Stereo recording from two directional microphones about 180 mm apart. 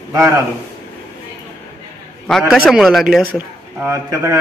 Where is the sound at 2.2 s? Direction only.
5° left (ahead or behind).